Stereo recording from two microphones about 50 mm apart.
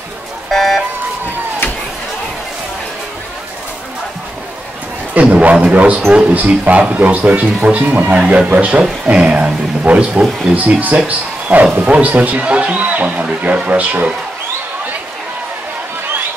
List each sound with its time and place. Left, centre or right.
0.5 s car alarm: centre
5.1 s speech: right